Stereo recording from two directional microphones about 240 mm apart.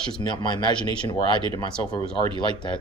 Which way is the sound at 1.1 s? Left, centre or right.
Centre.